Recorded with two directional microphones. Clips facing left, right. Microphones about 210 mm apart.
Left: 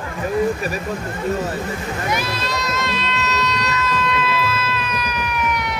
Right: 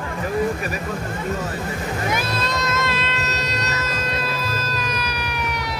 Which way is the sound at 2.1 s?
50° right (ahead or behind).